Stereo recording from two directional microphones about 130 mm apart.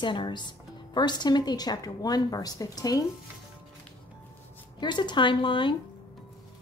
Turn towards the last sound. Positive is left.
turn(degrees=40)  # may be behind; listen again after turning